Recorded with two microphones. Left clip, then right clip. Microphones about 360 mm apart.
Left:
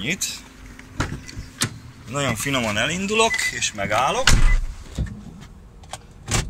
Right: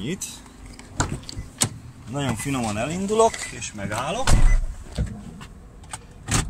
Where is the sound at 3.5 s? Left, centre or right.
Centre.